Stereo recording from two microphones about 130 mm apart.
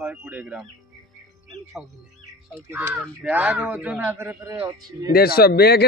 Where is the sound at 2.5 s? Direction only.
20° right (ahead or behind).